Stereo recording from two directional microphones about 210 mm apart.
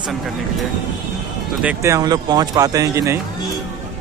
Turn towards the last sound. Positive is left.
turn(degrees=-15)  # may be behind; listen again after turning